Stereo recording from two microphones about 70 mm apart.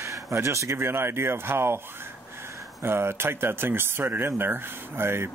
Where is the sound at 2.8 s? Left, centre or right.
Right.